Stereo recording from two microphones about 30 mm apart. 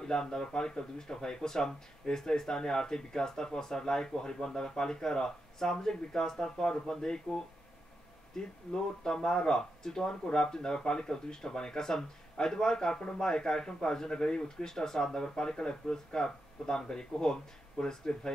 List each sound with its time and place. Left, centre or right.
0.0 s speech: left
8.3 s speech: centre